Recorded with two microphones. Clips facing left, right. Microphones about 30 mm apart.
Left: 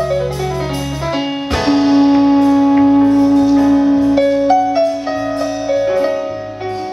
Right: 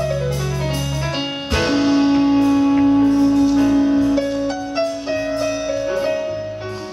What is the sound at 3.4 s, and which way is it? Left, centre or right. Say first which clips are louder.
Music: left 4 dB; left.